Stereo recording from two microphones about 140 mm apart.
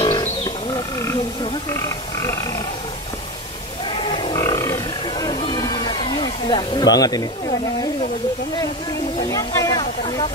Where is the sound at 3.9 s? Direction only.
40° left (ahead or behind).